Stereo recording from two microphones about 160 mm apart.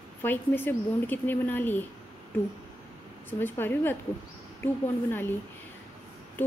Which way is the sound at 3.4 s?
15° left (ahead or behind).